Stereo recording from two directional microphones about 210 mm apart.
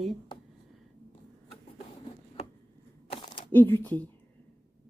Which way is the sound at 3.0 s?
30° left (ahead or behind).